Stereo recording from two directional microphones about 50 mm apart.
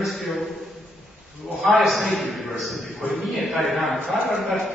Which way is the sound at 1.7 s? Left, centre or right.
Centre.